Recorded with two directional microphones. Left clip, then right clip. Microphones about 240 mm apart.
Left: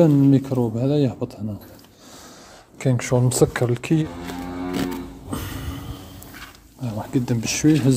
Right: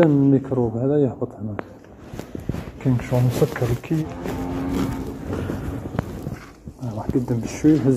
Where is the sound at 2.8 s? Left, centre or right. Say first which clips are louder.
Left 2 dB; left.